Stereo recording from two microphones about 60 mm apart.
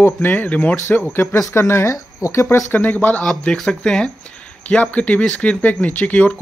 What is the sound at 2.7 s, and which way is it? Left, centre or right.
Speech, left.